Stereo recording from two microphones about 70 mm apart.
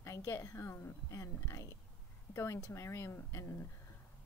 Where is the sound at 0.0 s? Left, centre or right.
Left.